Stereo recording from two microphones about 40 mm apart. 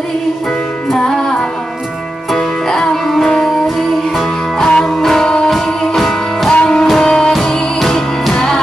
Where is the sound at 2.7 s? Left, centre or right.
Centre.